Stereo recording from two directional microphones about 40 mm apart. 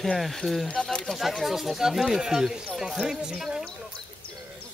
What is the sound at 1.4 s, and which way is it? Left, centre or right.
Speech, centre.